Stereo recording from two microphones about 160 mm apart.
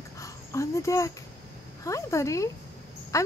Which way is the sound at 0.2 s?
20° left (ahead or behind).